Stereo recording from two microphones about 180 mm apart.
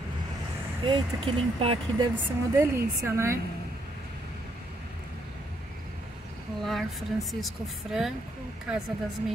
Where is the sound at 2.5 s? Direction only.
15° right (ahead or behind).